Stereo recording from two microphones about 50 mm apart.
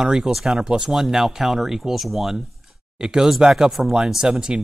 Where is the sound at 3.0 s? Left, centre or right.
Centre.